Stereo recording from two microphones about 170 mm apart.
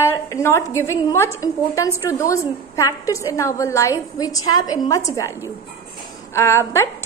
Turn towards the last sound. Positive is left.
turn(degrees=15)  # may be behind; listen again after turning